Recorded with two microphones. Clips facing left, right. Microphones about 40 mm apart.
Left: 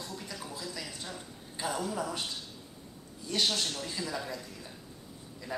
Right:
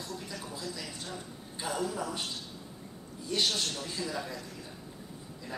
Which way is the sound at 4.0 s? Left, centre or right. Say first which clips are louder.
Right 2 dB; right.